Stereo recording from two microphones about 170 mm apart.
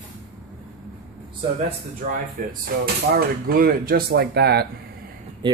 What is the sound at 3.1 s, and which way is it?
Speech, 65° right (ahead or behind).